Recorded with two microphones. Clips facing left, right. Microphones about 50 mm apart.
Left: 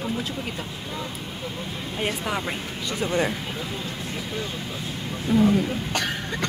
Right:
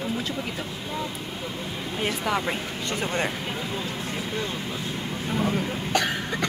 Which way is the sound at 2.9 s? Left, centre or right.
Right.